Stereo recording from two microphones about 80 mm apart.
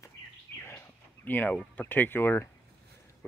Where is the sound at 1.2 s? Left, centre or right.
Left.